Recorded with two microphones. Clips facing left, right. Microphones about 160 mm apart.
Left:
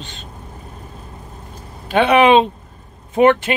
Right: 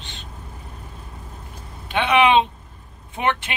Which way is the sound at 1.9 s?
45° left (ahead or behind).